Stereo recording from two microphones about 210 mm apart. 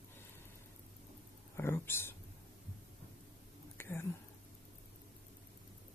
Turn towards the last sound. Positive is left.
turn(degrees=10)  # may be behind; listen again after turning